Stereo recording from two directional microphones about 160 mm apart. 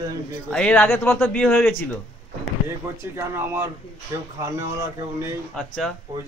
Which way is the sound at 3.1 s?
15° right (ahead or behind).